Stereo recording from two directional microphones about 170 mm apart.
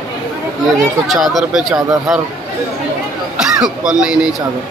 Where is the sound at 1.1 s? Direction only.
Centre (ahead or behind).